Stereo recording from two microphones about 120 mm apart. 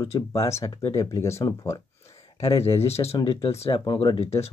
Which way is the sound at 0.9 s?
25° left (ahead or behind).